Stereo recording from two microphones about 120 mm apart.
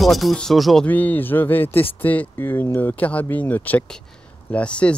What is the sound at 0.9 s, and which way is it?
Speech, 15° left (ahead or behind).